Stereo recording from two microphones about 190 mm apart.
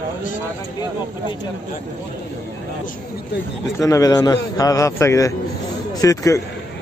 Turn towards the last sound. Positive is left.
turn(degrees=15)  # may be behind; listen again after turning